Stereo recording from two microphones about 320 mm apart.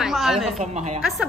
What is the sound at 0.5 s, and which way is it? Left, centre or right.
Speech, right.